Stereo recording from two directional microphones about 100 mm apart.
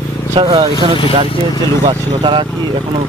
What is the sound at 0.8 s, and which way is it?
Speech, 50° right (ahead or behind).